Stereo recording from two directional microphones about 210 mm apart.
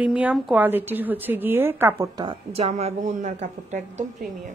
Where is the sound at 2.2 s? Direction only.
30° right (ahead or behind).